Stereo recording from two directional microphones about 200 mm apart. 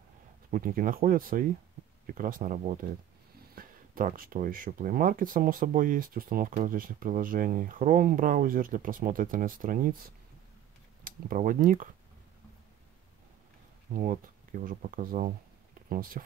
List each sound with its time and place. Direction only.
0.5 s speech: 45° right (ahead or behind)
13.9 s speech: 40° right (ahead or behind)